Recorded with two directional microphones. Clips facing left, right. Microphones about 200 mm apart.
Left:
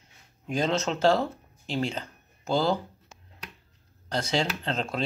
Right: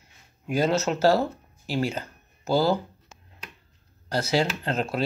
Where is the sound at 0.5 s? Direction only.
5° right (ahead or behind).